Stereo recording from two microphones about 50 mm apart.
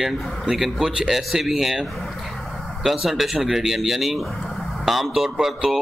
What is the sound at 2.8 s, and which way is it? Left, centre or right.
A man's voice, centre.